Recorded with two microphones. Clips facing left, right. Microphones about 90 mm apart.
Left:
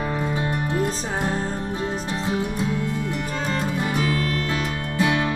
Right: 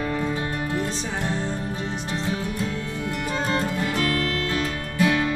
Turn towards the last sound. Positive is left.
turn(degrees=20)  # may be behind; listen again after turning